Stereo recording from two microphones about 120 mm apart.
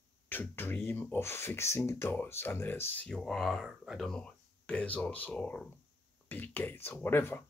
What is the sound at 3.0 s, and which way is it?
Speech, 5° left (ahead or behind).